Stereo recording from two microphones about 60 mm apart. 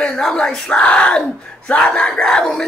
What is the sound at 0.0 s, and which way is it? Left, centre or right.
Speech, centre.